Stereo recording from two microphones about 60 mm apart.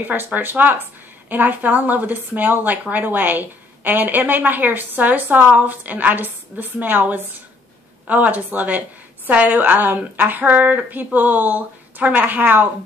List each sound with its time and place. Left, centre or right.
0.0 s a woman's voice: right